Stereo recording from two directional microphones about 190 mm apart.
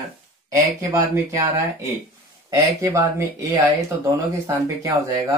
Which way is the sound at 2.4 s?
15° right (ahead or behind).